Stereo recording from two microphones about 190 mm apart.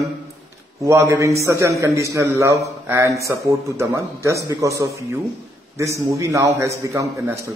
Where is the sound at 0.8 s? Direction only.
15° right (ahead or behind).